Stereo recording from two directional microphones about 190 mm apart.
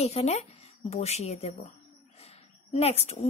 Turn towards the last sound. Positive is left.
turn(degrees=35)  # may be behind; listen again after turning